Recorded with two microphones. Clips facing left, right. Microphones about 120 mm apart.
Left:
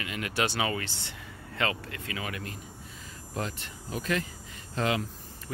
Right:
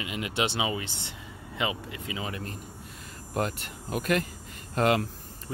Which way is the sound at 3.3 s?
55° right (ahead or behind).